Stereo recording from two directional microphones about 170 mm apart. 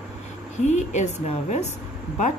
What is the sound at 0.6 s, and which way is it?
A woman's voice, 40° left (ahead or behind).